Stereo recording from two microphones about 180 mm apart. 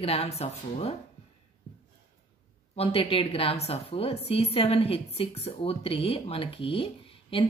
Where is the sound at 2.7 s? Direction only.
30° left (ahead or behind).